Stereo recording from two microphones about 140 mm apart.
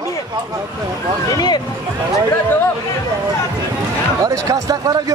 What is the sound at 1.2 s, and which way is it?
Speech, 30° left (ahead or behind).